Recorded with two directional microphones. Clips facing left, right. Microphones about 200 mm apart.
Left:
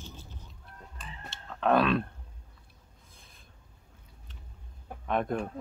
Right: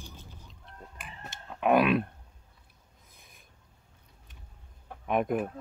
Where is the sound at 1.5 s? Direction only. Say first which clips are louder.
Right 1 dB; 15° right (ahead or behind).